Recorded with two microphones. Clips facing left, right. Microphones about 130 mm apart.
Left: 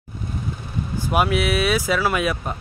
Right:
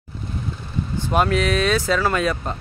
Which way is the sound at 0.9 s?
10° left (ahead or behind).